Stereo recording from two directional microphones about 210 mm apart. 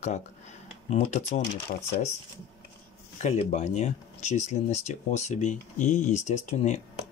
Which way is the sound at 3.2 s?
35° left (ahead or behind).